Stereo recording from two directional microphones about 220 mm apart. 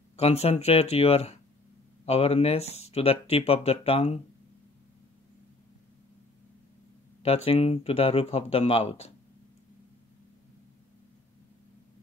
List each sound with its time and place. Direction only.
0.2 s speech: 30° left (ahead or behind)
7.2 s speech: 25° left (ahead or behind)